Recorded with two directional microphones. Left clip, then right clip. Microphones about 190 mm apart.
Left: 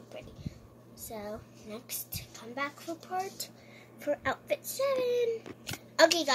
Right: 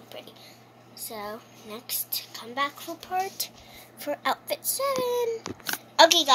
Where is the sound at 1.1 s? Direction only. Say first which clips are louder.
Right 4 dB; 10° left (ahead or behind).